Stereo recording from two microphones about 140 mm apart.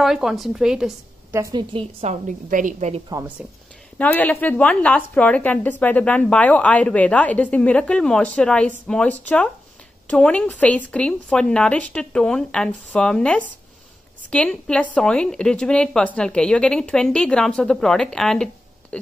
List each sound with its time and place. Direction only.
0.0 s a woman's voice: 5° right (ahead or behind)
1.3 s a woman's voice: 20° right (ahead or behind)
1.7 s a woman's voice: 45° right (ahead or behind)
2.2 s a woman's voice: 65° right (ahead or behind)
3.1 s a woman's voice: 25° right (ahead or behind)
4.0 s a woman's voice: 10° left (ahead or behind)